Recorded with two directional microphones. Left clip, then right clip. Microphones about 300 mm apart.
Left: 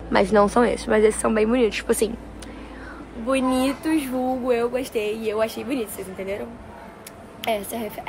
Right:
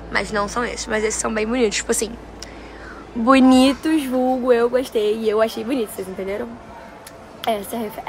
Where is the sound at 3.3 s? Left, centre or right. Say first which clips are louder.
Right 8 dB; right.